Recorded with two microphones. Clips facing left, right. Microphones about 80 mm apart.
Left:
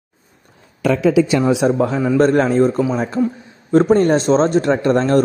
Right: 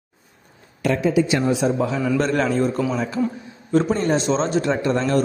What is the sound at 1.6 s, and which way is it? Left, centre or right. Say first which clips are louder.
Speech: left 5 dB; left.